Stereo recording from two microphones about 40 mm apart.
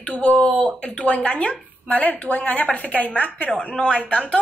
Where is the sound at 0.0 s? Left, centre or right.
Left.